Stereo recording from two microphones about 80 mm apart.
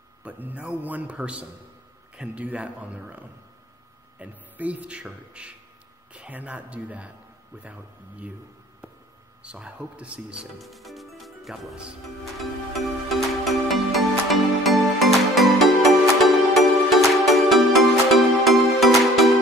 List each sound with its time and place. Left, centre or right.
0.2 s a man's voice: centre
9.4 s a man's voice: centre
10.6 s speech: centre
12.4 s music: centre